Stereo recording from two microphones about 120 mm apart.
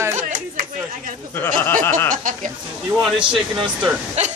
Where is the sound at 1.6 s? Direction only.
20° left (ahead or behind).